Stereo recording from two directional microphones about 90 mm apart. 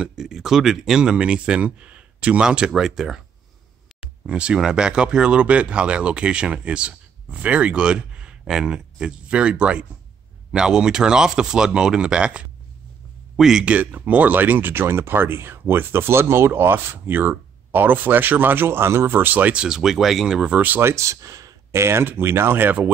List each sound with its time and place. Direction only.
0.0 s speech: 5° right (ahead or behind)
20.9 s speech: 35° right (ahead or behind)